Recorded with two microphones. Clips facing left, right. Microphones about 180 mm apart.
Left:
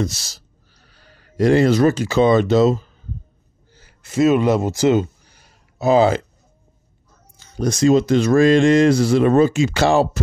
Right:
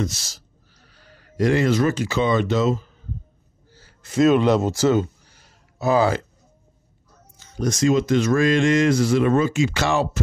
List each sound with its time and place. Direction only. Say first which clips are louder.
0.0 s speech: left 3 dB; 35° left (ahead or behind)
3.7 s a sound: left 1 dB; 10° left (ahead or behind)
7.3 s speech: left 3 dB; 35° left (ahead or behind)